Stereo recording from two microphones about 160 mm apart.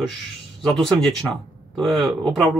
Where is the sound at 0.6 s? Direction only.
5° left (ahead or behind).